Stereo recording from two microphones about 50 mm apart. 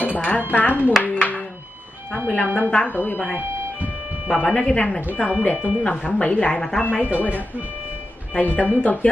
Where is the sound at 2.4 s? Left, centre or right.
Left.